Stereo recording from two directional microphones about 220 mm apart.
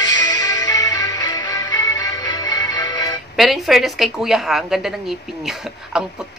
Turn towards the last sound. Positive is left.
turn(degrees=-5)  # may be behind; listen again after turning